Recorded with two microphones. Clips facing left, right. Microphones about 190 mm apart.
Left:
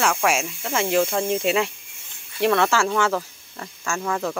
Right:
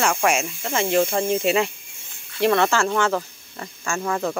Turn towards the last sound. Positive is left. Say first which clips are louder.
# right 1 dB
turn(degrees=-5)  # may be behind; listen again after turning